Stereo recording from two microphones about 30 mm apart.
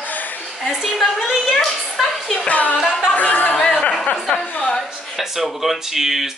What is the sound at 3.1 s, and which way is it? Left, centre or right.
Chatter, left.